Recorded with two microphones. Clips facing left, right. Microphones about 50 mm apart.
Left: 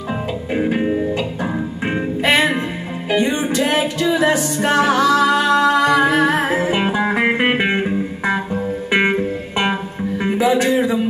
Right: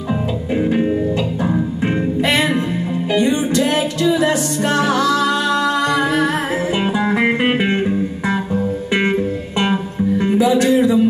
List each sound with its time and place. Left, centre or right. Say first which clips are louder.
0.6 s music: right 1 dB; centre